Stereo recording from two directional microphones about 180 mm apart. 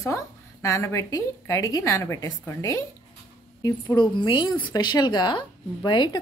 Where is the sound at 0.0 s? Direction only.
15° left (ahead or behind).